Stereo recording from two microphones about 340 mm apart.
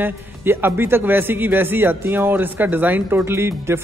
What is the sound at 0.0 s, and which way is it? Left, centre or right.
A man's voice, centre.